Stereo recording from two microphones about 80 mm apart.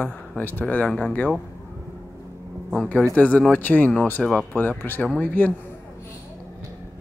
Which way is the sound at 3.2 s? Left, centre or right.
Centre.